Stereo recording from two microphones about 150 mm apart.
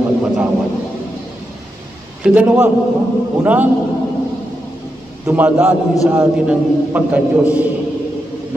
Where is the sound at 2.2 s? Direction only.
5° right (ahead or behind).